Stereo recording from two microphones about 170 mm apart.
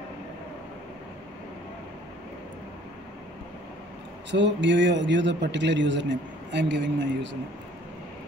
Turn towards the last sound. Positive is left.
turn(degrees=-90)